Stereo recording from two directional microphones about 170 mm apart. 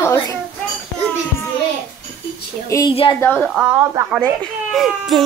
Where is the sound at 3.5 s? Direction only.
5° right (ahead or behind).